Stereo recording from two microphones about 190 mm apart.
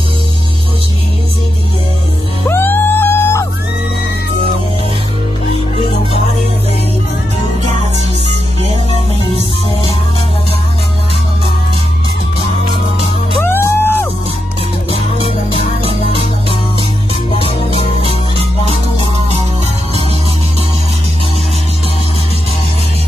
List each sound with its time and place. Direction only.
2.4 s music: 10° left (ahead or behind)
13.4 s music: 10° left (ahead or behind)
14.9 s music: 30° left (ahead or behind)
15.8 s music: 30° right (ahead or behind)
17.3 s music: 30° left (ahead or behind)